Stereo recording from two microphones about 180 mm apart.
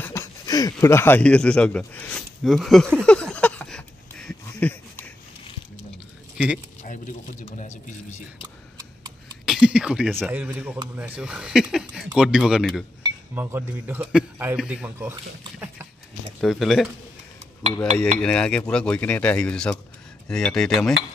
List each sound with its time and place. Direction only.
0.0 s speech: 15° left (ahead or behind); by 2.9 s centre (ahead or behind)
3.0 s a sound: 5° left (ahead or behind)
6.3 s speech: 5° right (ahead or behind)
6.8 s speech: 45° left (ahead or behind)
9.5 s a man's voice: 5° right (ahead or behind)
16.3 s speech: centre (ahead or behind)
18.2 s speech: 5° left (ahead or behind)